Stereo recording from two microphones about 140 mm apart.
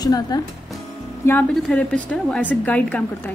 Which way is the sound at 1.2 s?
15° left (ahead or behind).